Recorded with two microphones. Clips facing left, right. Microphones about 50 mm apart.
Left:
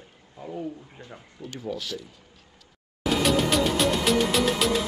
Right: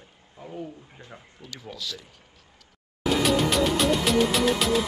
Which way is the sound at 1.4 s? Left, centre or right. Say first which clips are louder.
Left 9 dB; left.